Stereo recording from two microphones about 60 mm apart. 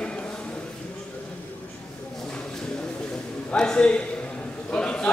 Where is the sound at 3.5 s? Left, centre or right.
Centre.